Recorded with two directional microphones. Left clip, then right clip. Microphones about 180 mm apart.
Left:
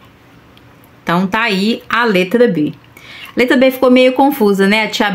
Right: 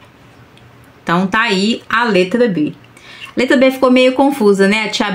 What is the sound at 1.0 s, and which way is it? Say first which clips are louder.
A woman's voice: even; 5° left (ahead or behind).